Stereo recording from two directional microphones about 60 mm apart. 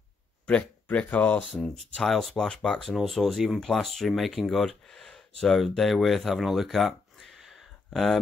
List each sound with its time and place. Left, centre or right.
0.5 s speech: left
1.5 s speech: centre
2.8 s speech: centre